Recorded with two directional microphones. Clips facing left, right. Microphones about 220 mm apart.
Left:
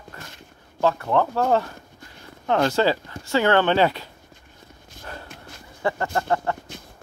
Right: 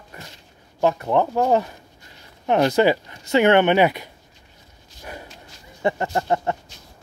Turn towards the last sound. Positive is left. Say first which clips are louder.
# right 1 dB
turn(degrees=-20)  # may be behind; listen again after turning